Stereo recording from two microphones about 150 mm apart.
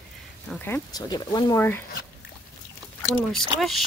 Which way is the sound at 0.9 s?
30° left (ahead or behind).